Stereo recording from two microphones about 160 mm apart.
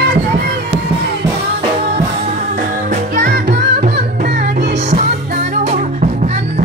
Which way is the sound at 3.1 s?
75° right (ahead or behind).